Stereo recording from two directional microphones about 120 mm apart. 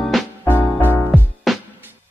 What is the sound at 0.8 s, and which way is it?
Music, 15° left (ahead or behind).